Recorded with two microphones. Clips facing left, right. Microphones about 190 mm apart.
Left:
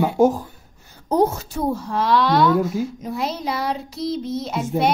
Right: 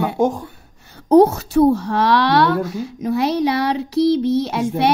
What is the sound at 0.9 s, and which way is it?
A child's voice, 65° right (ahead or behind).